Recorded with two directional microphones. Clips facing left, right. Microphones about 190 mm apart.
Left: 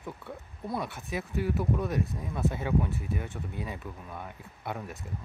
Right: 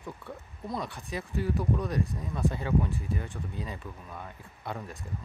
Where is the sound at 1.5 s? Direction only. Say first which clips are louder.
Even; 5° left (ahead or behind).